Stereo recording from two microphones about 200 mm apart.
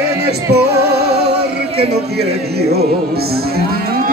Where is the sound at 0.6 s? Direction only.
55° right (ahead or behind).